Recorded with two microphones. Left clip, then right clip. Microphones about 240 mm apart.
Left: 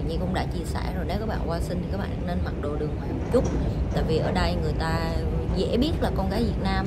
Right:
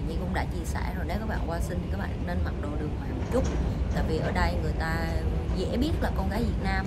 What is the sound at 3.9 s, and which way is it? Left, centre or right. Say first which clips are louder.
Speech: left 4 dB; centre.